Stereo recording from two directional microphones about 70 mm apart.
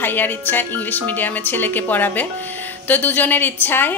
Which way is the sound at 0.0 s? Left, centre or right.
Left.